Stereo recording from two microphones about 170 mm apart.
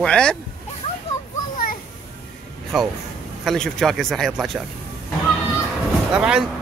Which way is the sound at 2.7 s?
Centre (ahead or behind).